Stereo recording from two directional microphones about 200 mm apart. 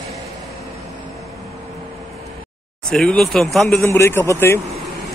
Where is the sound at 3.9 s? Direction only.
10° left (ahead or behind).